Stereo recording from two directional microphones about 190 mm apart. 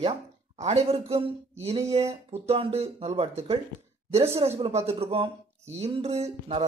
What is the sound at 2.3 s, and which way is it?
Speech, 30° right (ahead or behind).